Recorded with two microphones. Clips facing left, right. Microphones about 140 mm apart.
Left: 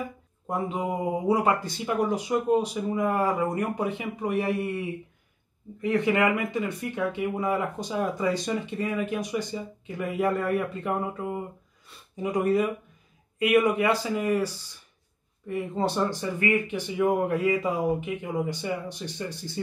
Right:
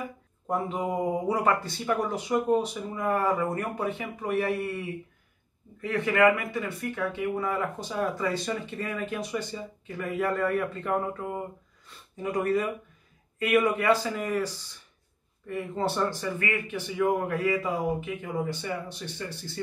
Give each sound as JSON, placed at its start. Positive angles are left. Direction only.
{"t": 0.5, "sound": "speech", "side_deg": 15}
{"t": 12.2, "sound": "speech", "side_deg": 15}